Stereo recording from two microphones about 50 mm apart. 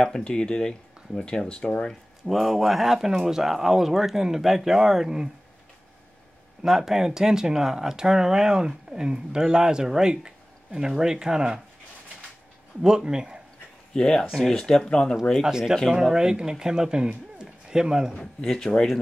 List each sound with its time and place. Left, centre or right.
0.0 s speech: centre
2.2 s speech: centre
6.6 s speech: centre
12.8 s speech: centre
13.9 s speech: centre
14.2 s speech: centre
14.5 s speech: centre
15.3 s speech: centre
15.6 s a man's voice: centre
18.1 s speech: centre